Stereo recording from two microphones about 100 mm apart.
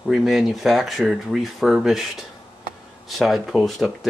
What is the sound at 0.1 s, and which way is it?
Speech, centre (ahead or behind).